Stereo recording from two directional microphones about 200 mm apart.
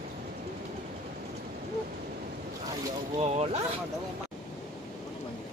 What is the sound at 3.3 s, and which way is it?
Speech, 35° right (ahead or behind).